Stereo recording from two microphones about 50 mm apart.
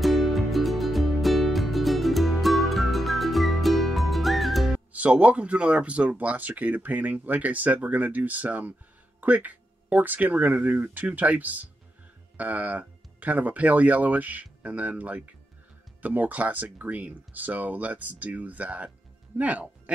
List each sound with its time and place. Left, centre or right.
0.0 s music: centre
4.9 s speech: right